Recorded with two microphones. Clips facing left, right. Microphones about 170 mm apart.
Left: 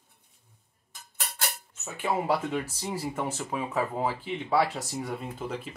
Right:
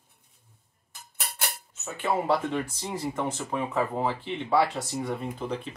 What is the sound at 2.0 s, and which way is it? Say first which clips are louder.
Speech: right 2 dB; 10° left (ahead or behind).